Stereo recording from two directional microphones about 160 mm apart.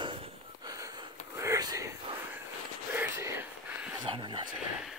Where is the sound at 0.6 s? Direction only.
20° right (ahead or behind).